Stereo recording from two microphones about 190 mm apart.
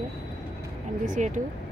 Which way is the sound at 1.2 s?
40° right (ahead or behind).